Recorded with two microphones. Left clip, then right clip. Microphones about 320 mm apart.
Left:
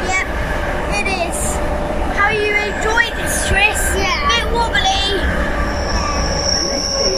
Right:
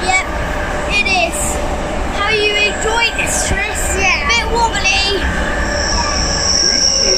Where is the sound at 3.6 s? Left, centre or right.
Centre.